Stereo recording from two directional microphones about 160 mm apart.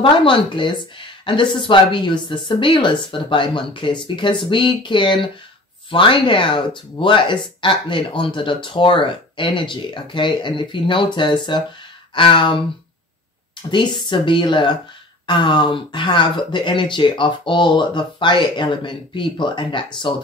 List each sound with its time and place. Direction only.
0.0 s speech: 30° left (ahead or behind)
13.7 s speech: 30° left (ahead or behind)